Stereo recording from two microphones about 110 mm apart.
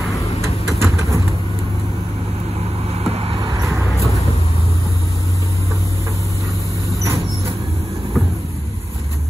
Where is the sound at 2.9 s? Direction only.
65° right (ahead or behind).